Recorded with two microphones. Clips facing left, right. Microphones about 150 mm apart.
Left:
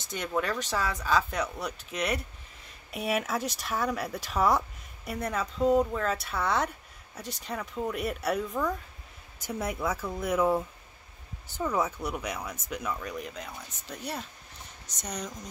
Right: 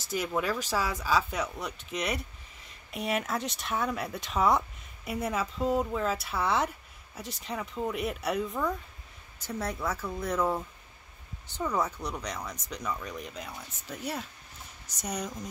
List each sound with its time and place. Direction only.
0.0 s speech: 5° right (ahead or behind)
9.4 s speech: 10° left (ahead or behind); by 15.3 s 5° right (ahead or behind)